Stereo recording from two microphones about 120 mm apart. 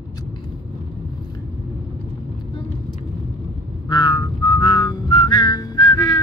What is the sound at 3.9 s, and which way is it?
Whistling, 35° left (ahead or behind).